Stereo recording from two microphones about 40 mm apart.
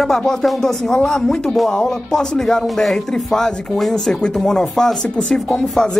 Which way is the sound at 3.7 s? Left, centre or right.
Centre.